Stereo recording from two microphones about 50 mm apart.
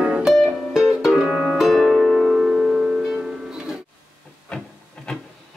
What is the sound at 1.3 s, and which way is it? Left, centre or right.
Music, right.